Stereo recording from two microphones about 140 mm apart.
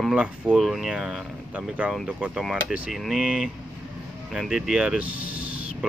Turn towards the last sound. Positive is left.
turn(degrees=-10)  # may be behind; listen again after turning